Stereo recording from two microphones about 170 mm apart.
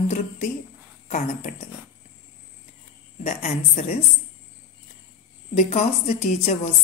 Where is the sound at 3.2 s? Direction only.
40° left (ahead or behind).